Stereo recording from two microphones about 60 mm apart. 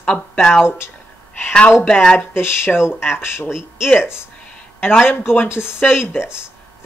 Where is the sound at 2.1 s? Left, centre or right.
Left.